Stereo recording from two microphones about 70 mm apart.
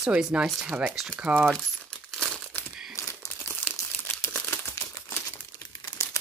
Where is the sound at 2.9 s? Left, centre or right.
Left.